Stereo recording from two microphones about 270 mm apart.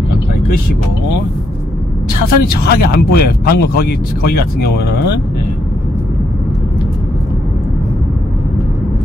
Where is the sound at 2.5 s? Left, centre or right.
Left.